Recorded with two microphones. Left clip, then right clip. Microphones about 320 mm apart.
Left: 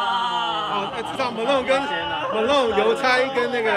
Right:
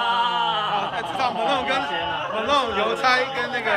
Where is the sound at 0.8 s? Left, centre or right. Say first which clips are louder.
Right 1 dB; centre.